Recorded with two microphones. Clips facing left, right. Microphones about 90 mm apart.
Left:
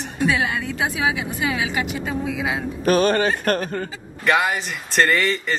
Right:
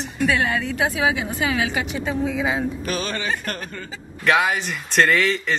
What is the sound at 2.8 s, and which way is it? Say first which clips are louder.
Speech: left 9 dB; 45° left (ahead or behind).